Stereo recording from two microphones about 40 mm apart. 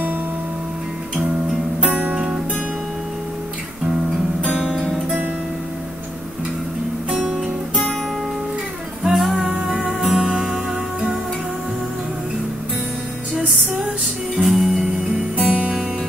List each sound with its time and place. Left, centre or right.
7.1 s music: centre
9.1 s music: centre
9.9 s music: centre
10.2 s music: centre
14.4 s music: centre
15.3 s music: right